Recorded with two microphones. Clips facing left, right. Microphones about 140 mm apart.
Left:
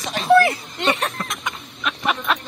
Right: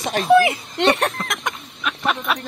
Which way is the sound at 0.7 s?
75° right (ahead or behind).